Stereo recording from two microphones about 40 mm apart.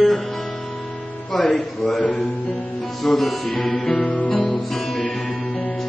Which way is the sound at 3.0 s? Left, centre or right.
Centre.